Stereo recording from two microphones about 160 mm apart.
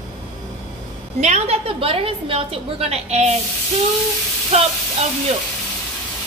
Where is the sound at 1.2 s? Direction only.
40° right (ahead or behind).